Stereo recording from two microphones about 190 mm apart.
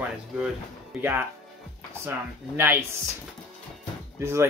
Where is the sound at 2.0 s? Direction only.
10° right (ahead or behind).